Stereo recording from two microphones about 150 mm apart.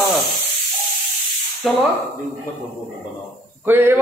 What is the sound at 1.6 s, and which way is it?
Speech, centre (ahead or behind).